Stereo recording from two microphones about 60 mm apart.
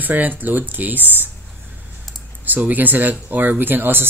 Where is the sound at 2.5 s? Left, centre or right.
Right.